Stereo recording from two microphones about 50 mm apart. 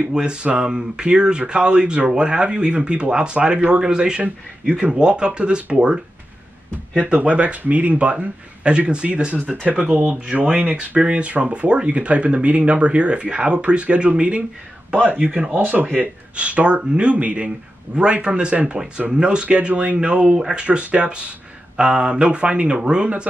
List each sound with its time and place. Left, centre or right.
0.1 s speech: centre
7.0 s speech: right
20.3 s speech: centre
20.6 s speech: right